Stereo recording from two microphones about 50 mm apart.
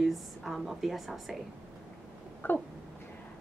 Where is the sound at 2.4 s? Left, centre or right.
Left.